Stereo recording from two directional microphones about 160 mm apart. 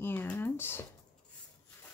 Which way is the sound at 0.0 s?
10° left (ahead or behind).